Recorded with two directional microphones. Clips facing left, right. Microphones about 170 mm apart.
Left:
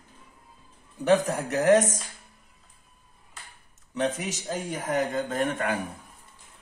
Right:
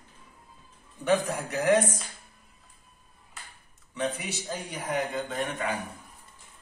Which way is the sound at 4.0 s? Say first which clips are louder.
Left 3 dB; 40° left (ahead or behind).